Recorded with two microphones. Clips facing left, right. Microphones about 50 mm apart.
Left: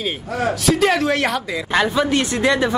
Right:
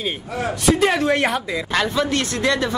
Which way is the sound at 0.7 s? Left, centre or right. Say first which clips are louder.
Right 1 dB; centre.